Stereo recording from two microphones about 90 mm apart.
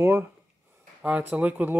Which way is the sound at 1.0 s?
15° right (ahead or behind).